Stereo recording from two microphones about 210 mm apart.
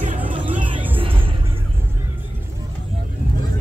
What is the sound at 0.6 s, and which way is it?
Music, 25° right (ahead or behind).